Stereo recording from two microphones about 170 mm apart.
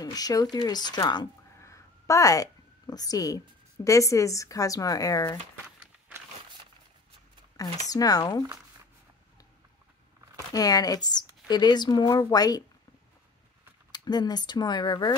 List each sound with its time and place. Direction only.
0.0 s speech: 20° left (ahead or behind)
5.8 s a sound: 10° right (ahead or behind)
7.6 s speech: 20° left (ahead or behind)
10.5 s speech: 20° left (ahead or behind)
13.9 s speech: 25° left (ahead or behind)